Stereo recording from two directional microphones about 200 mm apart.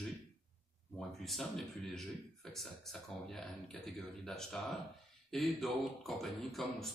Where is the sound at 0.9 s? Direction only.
Centre (ahead or behind).